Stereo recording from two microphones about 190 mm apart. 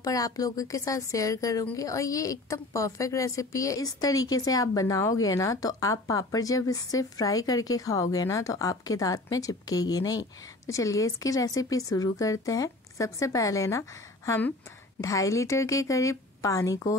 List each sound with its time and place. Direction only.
0.0 s a woman's voice: 20° left (ahead or behind)